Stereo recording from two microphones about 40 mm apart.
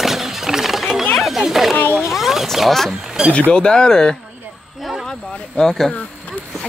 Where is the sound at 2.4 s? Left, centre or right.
Centre.